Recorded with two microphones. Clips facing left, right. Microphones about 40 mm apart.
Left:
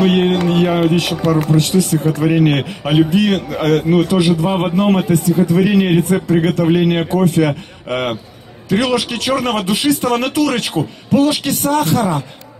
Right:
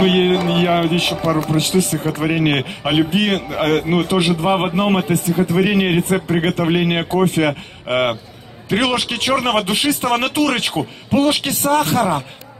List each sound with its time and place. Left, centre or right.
0.0 s a man's voice: right
7.3 s a man's voice: right